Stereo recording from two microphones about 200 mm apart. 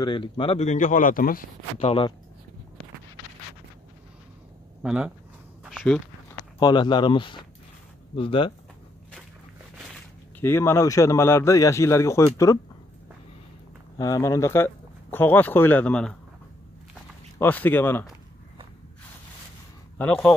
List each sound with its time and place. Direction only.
0.0 s speech: 25° left (ahead or behind); by 1.9 s 45° left (ahead or behind)
1.9 s speech: 30° left (ahead or behind)
4.8 s speech: 5° right (ahead or behind)
5.6 s a sound: centre (ahead or behind)
6.6 s speech: 20° left (ahead or behind)
10.4 s speech: 10° left (ahead or behind)
13.9 s speech: 15° left (ahead or behind)
17.4 s speech: 10° left (ahead or behind)
20.0 s speech: 5° left (ahead or behind)